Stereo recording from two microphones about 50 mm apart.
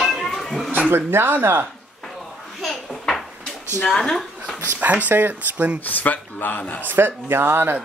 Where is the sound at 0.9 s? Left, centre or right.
Right.